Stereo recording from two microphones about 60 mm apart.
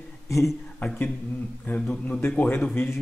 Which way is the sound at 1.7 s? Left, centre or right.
Left.